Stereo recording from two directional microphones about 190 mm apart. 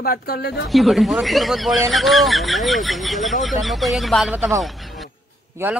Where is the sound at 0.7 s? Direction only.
Centre (ahead or behind).